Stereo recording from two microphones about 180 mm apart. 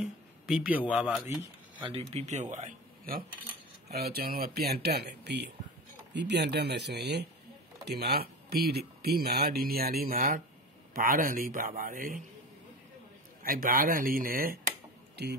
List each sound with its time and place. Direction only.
0.0 s a man's voice: 5° right (ahead or behind)
1.2 s speech: 15° right (ahead or behind)
1.9 s speech: 35° right (ahead or behind)
3.9 s a man's voice: 60° right (ahead or behind)
13.4 s a man's voice: 50° right (ahead or behind)
15.2 s speech: 65° right (ahead or behind)